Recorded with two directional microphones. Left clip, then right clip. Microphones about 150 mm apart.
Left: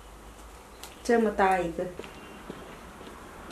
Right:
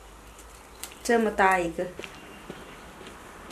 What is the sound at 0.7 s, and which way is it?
Speech, 10° right (ahead or behind).